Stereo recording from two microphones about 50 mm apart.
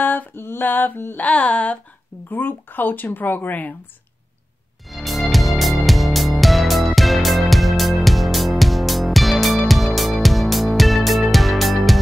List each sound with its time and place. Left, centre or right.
0.0 s female singing: left
1.1 s a sound: left
2.2 s speech: left
4.8 s music: centre